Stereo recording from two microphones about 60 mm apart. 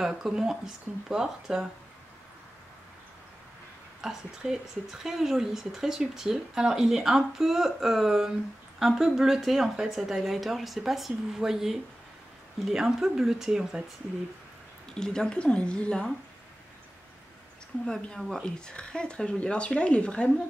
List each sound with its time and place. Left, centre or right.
0.0 s speech: centre
4.0 s speech: centre
15.0 s speech: centre
18.0 s speech: centre